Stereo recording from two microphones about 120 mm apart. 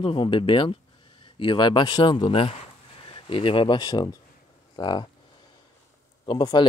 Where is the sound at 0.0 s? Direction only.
45° left (ahead or behind).